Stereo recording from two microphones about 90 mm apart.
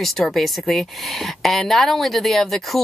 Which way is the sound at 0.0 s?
Centre (ahead or behind).